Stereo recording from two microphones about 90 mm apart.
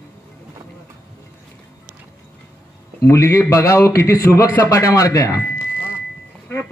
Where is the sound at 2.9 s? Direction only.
35° left (ahead or behind).